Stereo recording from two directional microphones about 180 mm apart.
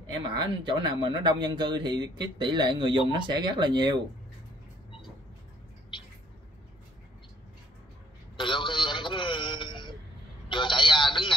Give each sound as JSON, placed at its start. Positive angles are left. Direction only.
{"t": 0.2, "sound": "speech", "side_deg": -25}
{"t": 8.4, "sound": "a sound", "side_deg": 25}
{"t": 10.5, "sound": "telephone", "side_deg": 25}